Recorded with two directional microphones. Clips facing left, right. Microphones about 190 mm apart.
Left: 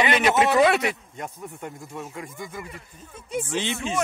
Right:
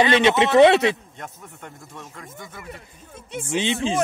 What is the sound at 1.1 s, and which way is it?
Speech, 5° left (ahead or behind).